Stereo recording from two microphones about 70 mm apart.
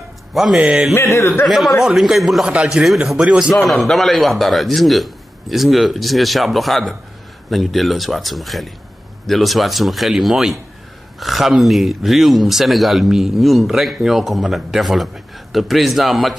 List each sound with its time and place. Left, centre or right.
0.3 s speech: centre
0.9 s speech: left
1.5 s speech: centre
2.4 s speech: centre
3.5 s speech: centre